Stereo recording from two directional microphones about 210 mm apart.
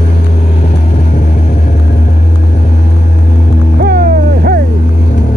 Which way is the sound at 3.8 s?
50° right (ahead or behind).